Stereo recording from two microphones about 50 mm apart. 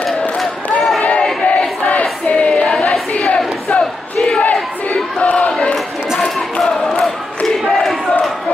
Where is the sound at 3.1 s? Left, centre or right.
Left.